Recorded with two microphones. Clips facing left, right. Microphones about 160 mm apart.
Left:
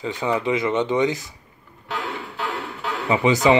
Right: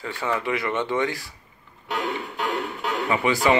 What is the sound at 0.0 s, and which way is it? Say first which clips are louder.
Speech: left 4 dB; 15° left (ahead or behind).